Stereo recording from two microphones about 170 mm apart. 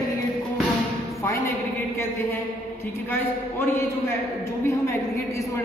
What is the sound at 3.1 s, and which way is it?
A woman's voice, 15° left (ahead or behind).